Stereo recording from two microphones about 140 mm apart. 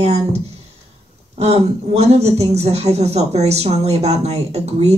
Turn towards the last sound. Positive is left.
turn(degrees=-50)  # may be behind; listen again after turning